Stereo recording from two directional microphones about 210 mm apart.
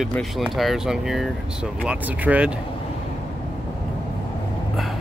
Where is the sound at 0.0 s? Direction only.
Centre (ahead or behind).